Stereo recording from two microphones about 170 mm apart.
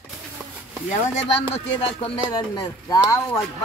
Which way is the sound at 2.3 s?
25° left (ahead or behind).